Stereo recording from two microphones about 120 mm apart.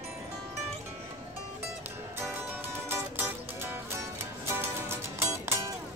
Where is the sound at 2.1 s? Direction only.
20° right (ahead or behind).